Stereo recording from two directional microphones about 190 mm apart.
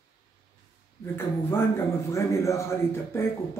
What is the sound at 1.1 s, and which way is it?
Speech, 10° left (ahead or behind).